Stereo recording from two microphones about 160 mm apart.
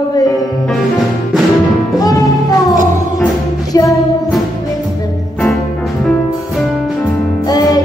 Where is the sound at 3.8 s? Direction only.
Centre (ahead or behind).